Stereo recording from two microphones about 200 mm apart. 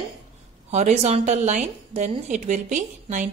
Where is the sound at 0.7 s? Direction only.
35° right (ahead or behind).